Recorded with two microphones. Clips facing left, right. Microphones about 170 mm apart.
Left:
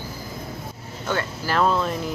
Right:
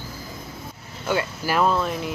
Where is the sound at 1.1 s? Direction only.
15° right (ahead or behind).